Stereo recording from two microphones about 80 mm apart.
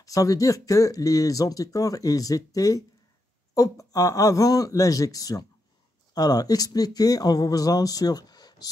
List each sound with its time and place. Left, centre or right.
0.0 s speech: left